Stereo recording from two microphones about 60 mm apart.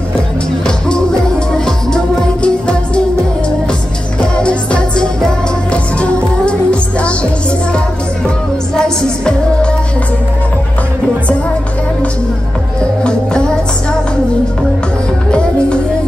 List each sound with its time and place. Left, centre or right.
0.7 s music: centre
2.4 s music: centre
4.2 s music: centre
8.7 s music: centre
13.0 s music: centre